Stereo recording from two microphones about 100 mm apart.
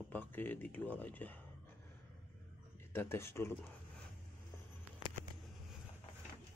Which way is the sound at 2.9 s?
25° left (ahead or behind).